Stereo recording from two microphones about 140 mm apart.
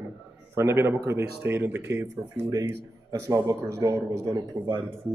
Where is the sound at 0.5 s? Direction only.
20° right (ahead or behind).